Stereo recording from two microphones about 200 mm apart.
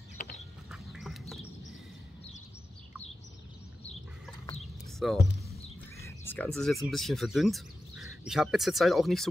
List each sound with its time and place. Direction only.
0.2 s duck: 50° left (ahead or behind)
0.7 s duck: centre (ahead or behind)
4.9 s music: centre (ahead or behind)
5.9 s speech: 10° left (ahead or behind)